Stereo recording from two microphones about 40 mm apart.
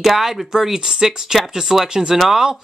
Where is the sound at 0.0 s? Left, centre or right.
Centre.